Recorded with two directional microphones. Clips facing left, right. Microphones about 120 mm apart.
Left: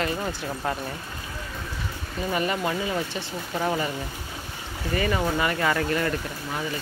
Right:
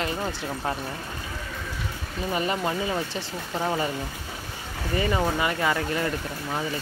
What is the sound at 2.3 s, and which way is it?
Speech, 25° right (ahead or behind).